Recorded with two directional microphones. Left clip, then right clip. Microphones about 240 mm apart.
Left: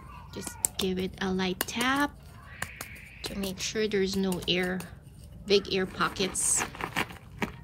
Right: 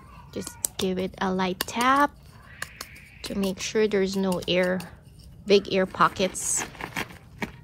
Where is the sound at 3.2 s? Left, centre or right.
Right.